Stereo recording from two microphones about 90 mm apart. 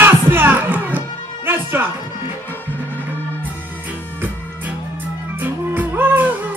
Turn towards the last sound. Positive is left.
turn(degrees=-20)  # may be behind; listen again after turning